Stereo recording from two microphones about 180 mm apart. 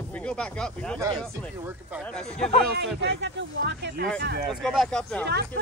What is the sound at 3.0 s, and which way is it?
Speech, 75° right (ahead or behind).